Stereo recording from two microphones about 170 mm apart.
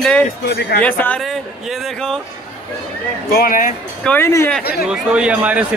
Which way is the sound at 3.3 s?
55° left (ahead or behind).